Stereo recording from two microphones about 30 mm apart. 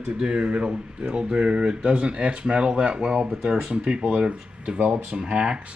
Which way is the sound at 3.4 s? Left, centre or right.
Centre.